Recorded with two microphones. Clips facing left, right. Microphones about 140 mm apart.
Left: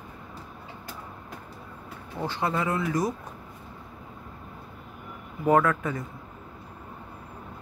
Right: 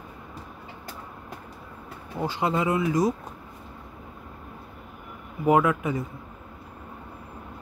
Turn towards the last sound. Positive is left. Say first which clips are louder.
# right 1 dB
turn(degrees=-15)  # may be behind; listen again after turning